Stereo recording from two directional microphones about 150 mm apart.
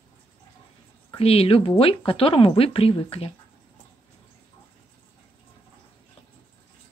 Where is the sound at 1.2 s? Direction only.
40° left (ahead or behind).